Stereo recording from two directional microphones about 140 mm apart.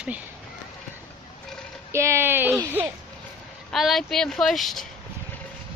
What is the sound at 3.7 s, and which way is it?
Speech, centre (ahead or behind).